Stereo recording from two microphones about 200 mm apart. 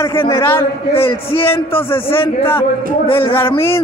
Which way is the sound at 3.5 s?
15° left (ahead or behind).